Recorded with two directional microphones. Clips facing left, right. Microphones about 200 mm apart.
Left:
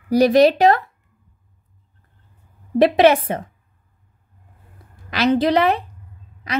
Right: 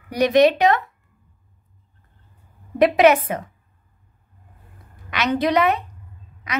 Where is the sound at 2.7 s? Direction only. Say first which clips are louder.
Left 1 dB; 30° left (ahead or behind).